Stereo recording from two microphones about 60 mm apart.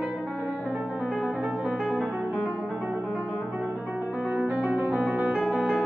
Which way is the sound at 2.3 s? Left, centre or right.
Left.